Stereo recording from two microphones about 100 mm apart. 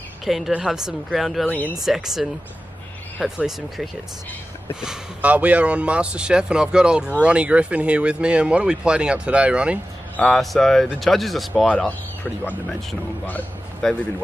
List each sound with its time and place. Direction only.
0.2 s a woman's voice: centre (ahead or behind)
1.5 s speech: 15° left (ahead or behind)
1.9 s speech: 5° right (ahead or behind)
4.8 s speech: 15° right (ahead or behind)
10.1 s speech: 5° left (ahead or behind)
13.8 s speech: 5° left (ahead or behind)